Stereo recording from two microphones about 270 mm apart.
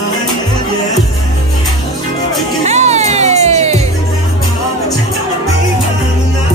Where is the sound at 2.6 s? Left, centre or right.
Right.